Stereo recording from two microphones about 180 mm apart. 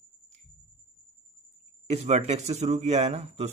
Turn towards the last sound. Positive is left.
turn(degrees=-40)  # may be behind; listen again after turning